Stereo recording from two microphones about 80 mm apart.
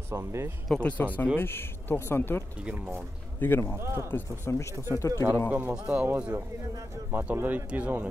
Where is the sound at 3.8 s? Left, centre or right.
Right.